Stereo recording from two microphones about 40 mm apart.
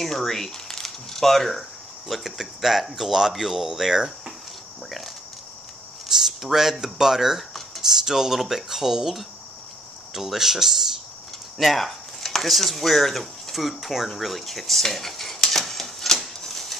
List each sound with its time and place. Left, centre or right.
0.0 s speech: centre
6.0 s speech: centre
16.4 s dishes: centre